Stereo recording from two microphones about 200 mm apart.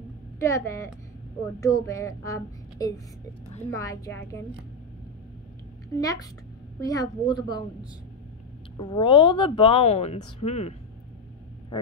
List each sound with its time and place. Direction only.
0.4 s speech: 15° left (ahead or behind)
5.9 s speech: 20° left (ahead or behind)
8.7 s speech: 25° left (ahead or behind)